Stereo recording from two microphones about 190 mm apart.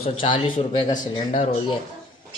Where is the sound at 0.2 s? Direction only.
30° left (ahead or behind).